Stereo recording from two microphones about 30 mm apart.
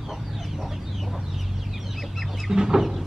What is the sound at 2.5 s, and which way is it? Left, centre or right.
Chicken, centre.